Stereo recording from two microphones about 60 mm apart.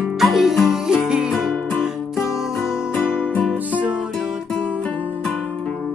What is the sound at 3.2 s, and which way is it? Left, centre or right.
Music, left.